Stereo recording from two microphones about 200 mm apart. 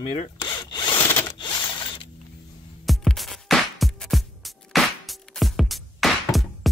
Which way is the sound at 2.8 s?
Centre (ahead or behind).